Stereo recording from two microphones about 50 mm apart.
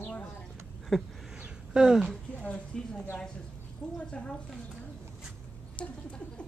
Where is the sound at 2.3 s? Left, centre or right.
Left.